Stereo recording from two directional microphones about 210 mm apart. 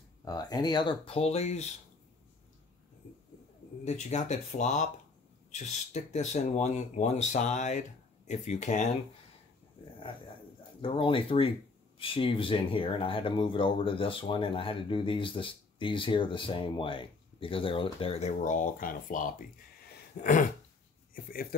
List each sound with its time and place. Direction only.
0.2 s speech: 20° left (ahead or behind)
3.8 s speech: 35° left (ahead or behind)
10.8 s speech: 25° left (ahead or behind); by 21.5 s 45° left (ahead or behind)